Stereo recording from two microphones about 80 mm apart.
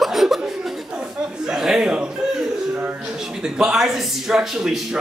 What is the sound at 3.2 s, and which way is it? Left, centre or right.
A man's voice, centre.